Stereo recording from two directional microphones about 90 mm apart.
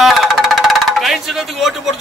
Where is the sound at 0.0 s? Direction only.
Centre (ahead or behind).